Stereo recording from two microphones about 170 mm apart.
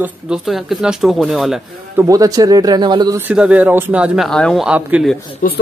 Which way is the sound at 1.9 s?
20° right (ahead or behind).